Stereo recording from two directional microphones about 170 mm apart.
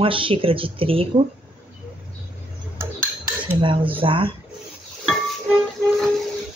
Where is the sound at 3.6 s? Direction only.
30° right (ahead or behind).